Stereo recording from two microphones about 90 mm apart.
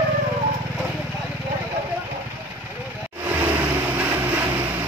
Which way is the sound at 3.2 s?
25° right (ahead or behind).